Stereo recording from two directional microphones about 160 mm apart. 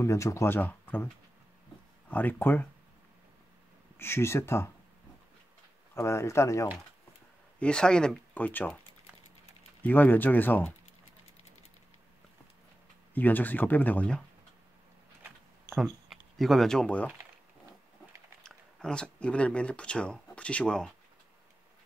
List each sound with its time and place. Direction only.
0.0 s speech: 20° left (ahead or behind)
2.0 s speech: 10° left (ahead or behind)
4.0 s speech: 15° left (ahead or behind)
5.9 s speech: 15° left (ahead or behind)
7.5 s speech: 5° left (ahead or behind)
9.8 s speech: 10° left (ahead or behind)
13.1 s speech: 10° left (ahead or behind)
15.7 s speech: centre (ahead or behind)
18.4 s a sound: 5° left (ahead or behind)
19.1 s speech: 5° left (ahead or behind)